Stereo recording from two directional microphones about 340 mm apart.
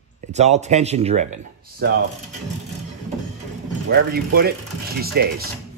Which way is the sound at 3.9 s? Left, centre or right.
Right.